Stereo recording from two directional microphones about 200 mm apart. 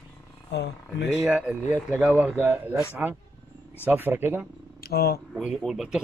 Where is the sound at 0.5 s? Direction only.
60° left (ahead or behind).